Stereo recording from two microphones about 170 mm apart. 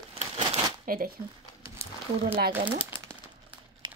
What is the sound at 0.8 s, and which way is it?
Speech, 60° right (ahead or behind).